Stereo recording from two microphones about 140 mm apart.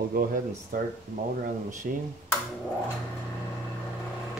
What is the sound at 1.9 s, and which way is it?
Speech, 90° right.